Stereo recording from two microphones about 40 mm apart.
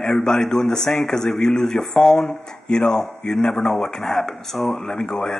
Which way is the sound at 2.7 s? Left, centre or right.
Left.